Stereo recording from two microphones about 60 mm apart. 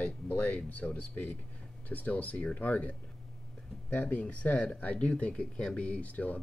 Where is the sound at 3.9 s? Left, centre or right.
Left.